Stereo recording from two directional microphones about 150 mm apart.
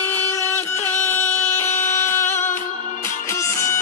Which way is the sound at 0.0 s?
10° left (ahead or behind).